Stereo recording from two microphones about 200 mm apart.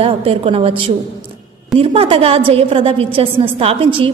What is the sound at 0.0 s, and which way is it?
A woman's voice, 30° right (ahead or behind).